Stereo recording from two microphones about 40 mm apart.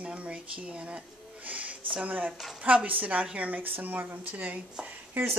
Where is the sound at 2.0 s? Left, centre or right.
Right.